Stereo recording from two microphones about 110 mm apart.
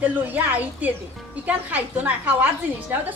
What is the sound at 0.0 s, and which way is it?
A woman's voice, 15° right (ahead or behind).